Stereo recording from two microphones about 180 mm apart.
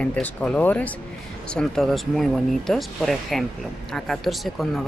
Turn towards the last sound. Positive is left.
turn(degrees=0)  # may be behind; listen again after turning